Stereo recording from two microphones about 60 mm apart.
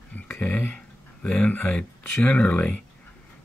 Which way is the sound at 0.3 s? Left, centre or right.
Centre.